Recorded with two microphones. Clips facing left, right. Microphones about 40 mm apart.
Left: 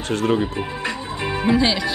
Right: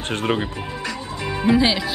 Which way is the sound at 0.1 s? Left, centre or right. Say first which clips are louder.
Left 3 dB; right.